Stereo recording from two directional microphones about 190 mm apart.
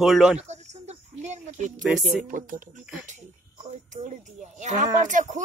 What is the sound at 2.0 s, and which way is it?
Speech, 45° right (ahead or behind).